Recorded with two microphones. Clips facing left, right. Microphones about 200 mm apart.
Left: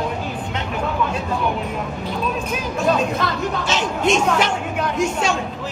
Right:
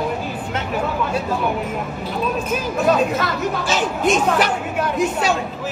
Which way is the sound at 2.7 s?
5° right (ahead or behind).